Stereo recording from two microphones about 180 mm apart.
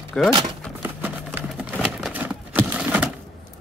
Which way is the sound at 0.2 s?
5° left (ahead or behind).